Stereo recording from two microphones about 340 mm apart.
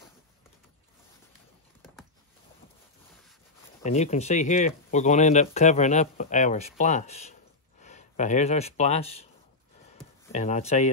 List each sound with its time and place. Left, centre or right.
3.8 s speech: centre
10.3 s speech: centre